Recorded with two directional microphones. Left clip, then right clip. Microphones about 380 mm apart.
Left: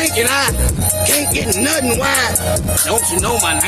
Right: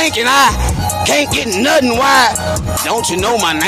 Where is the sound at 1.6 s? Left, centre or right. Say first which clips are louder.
Right 7 dB; right.